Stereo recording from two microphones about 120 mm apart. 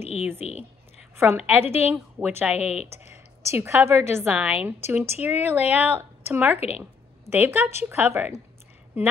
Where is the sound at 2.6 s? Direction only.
65° left (ahead or behind).